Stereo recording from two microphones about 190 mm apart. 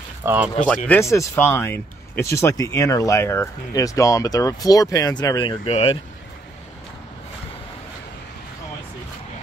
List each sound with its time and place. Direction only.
0.2 s speech: 10° right (ahead or behind)
0.8 s speech: 15° left (ahead or behind); by 5.9 s 30° left (ahead or behind)